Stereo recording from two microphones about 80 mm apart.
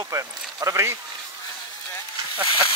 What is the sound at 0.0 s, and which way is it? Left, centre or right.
Speech, right.